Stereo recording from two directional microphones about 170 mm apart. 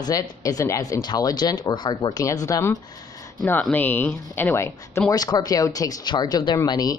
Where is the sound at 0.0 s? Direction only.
25° left (ahead or behind).